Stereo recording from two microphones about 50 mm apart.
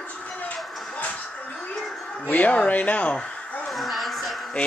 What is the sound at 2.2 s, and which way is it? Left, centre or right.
Speech, left.